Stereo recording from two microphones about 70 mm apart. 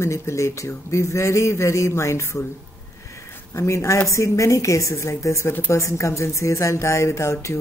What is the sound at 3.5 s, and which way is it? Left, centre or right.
Speech, left.